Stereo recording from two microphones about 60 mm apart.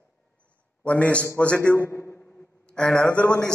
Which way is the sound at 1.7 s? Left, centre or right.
Left.